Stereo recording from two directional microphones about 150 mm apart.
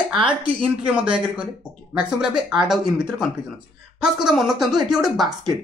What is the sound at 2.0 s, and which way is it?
Speech, 5° right (ahead or behind).